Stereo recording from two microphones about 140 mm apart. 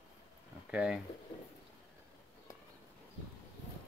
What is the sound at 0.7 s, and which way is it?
Speech, 5° right (ahead or behind).